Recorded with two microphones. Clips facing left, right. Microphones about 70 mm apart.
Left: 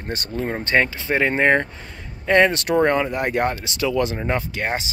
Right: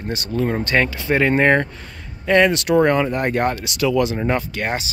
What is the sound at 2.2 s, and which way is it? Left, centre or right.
Speech, left.